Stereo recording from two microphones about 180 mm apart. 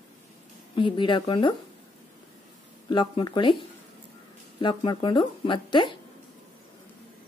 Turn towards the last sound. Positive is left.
turn(degrees=25)  # may be behind; listen again after turning